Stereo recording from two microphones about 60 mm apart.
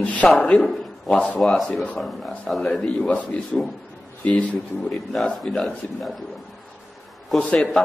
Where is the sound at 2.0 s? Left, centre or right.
Centre.